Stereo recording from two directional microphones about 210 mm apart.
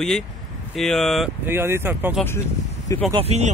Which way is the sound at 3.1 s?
30° right (ahead or behind).